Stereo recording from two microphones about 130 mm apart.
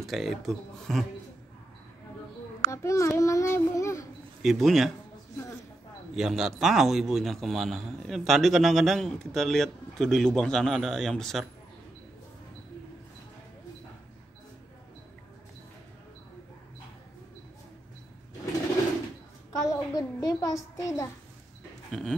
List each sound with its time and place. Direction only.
0.0 s a man's voice: centre (ahead or behind)
2.7 s a child's voice: 20° left (ahead or behind)
4.4 s a man's voice: centre (ahead or behind)
6.1 s a man's voice: 5° right (ahead or behind)
19.6 s a sound: 25° left (ahead or behind)
21.9 s a man's voice: centre (ahead or behind)